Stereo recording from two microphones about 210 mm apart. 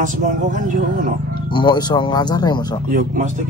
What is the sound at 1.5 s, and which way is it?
Speech, 20° left (ahead or behind).